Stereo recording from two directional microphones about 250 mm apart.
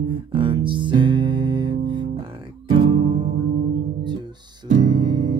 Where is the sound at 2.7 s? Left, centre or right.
Right.